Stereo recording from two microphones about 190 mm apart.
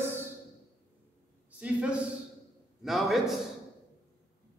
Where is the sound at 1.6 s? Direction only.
5° right (ahead or behind).